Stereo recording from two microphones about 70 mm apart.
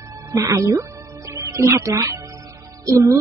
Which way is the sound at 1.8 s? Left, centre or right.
Right.